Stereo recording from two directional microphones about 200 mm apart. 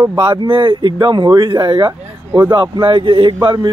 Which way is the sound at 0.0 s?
20° right (ahead or behind).